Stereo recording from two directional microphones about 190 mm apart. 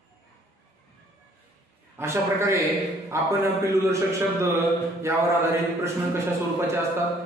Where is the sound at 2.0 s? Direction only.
15° right (ahead or behind).